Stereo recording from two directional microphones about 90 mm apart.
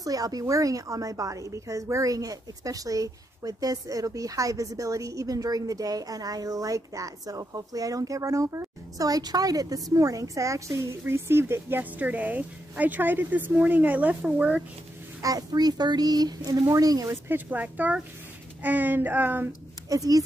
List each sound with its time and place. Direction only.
0.0 s a woman's voice: 40° right (ahead or behind); by 14.6 s 15° right (ahead or behind)
15.2 s speech: 45° right (ahead or behind)
17.1 s speech: 20° right (ahead or behind)
19.9 s speech: 45° right (ahead or behind)